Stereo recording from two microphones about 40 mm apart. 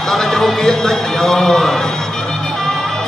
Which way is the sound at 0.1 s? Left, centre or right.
Centre.